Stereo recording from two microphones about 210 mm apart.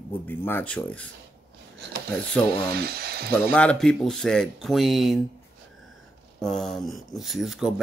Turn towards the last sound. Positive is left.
turn(degrees=0)  # may be behind; listen again after turning